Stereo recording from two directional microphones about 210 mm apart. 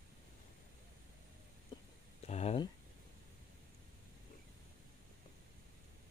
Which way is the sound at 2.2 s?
30° left (ahead or behind).